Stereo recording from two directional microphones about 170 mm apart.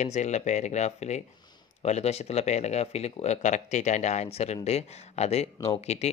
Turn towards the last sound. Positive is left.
turn(degrees=40)  # may be behind; listen again after turning